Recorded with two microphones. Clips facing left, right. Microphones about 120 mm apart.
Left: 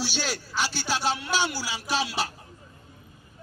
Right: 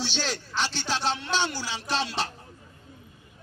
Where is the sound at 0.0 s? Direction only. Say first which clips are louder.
Even; 10° left (ahead or behind).